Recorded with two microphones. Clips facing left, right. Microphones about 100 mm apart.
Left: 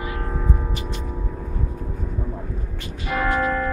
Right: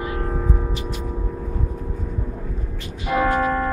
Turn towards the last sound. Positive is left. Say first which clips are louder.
# right 2 dB
turn(degrees=-25)  # may be behind; listen again after turning